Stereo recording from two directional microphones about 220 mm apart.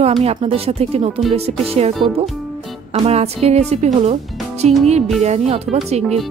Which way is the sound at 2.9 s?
30° right (ahead or behind).